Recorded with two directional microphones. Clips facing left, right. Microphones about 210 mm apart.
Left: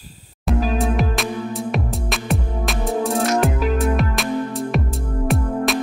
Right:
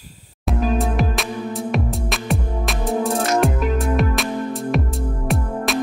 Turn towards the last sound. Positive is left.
turn(degrees=0)  # may be behind; listen again after turning